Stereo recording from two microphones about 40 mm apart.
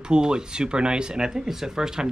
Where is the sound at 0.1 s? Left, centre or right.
Right.